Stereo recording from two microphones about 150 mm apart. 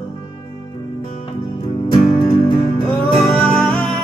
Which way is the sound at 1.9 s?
20° left (ahead or behind).